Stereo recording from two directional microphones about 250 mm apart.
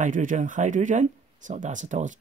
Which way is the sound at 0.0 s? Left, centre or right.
Right.